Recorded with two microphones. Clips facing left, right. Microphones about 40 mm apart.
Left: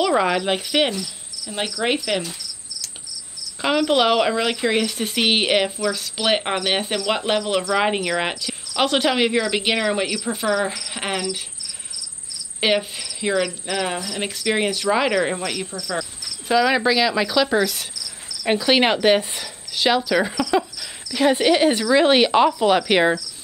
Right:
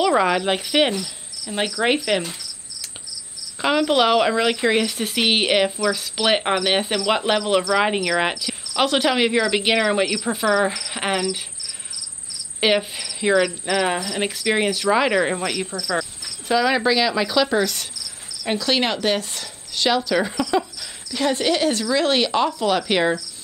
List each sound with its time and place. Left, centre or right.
0.0 s cricket: centre
2.0 s speech: centre
3.6 s cricket: centre
7.1 s speech: centre
7.7 s cricket: centre
12.5 s speech: centre
13.9 s speech: right
14.2 s cricket: centre
18.4 s speech: centre
20.1 s cricket: centre
21.1 s speech: centre